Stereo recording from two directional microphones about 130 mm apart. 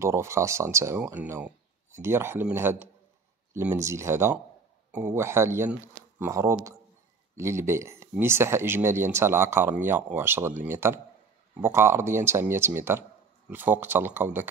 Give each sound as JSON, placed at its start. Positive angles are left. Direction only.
{"t": 0.0, "sound": "speech", "side_deg": -20}